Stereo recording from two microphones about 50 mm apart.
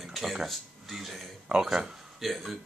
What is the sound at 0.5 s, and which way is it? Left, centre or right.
A man's voice, centre.